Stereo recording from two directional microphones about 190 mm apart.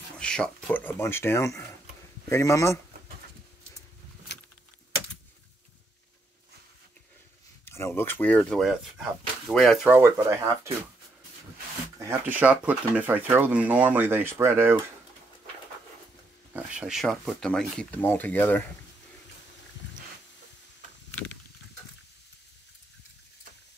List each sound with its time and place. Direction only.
0.2 s speech: 5° left (ahead or behind)
4.3 s keys jangling: 60° left (ahead or behind)
7.6 s speech: 10° left (ahead or behind)
9.9 s speech: 15° right (ahead or behind)
12.1 s speech: 10° right (ahead or behind)
16.5 s speech: 5° right (ahead or behind)